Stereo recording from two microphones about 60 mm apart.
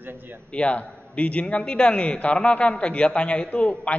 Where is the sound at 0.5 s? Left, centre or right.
Centre.